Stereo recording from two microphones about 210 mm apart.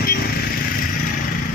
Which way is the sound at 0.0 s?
45° left (ahead or behind).